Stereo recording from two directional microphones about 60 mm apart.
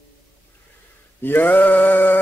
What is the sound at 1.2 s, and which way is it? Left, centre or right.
Mantra, left.